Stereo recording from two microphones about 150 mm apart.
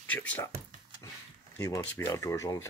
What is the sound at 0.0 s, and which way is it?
Speech, 10° left (ahead or behind).